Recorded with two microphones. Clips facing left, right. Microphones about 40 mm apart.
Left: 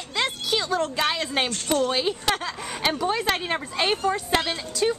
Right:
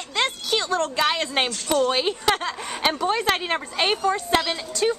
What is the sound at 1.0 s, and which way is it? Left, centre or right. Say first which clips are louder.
A woman's voice: right 2 dB; right.